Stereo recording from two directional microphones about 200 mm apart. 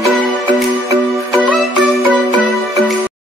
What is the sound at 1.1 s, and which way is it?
Music, centre (ahead or behind).